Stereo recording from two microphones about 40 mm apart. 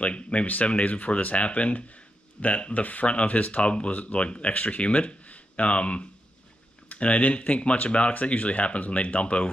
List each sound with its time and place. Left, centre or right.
0.0 s speech: left